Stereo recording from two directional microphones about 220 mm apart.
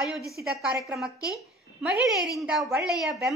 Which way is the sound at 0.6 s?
Centre (ahead or behind).